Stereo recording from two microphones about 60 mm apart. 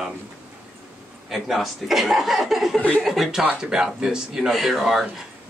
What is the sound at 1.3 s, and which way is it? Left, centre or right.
Speech, centre.